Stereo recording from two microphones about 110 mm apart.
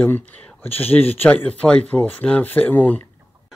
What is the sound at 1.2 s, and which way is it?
Speech, 15° left (ahead or behind).